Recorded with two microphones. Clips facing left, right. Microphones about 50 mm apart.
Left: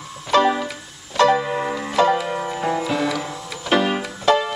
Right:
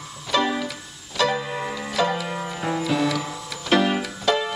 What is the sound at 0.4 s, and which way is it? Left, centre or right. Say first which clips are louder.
Music: left 6 dB; centre.